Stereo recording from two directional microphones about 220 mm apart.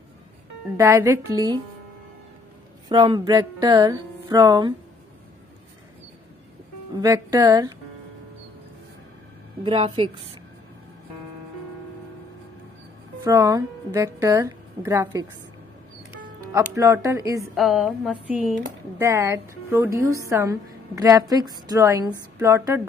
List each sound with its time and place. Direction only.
0.7 s a woman's voice: 10° right (ahead or behind)
2.9 s a woman's voice: 20° right (ahead or behind)
7.0 s a woman's voice: 15° right (ahead or behind)
9.6 s a woman's voice: 20° right (ahead or behind)
13.2 s a woman's voice: 15° right (ahead or behind)
16.5 s a woman's voice: 15° right (ahead or behind)
17.6 s a sound: centre (ahead or behind)
18.9 s a woman's voice: 15° right (ahead or behind)